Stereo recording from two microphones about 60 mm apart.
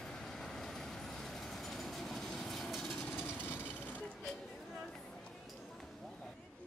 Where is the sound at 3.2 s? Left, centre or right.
Left.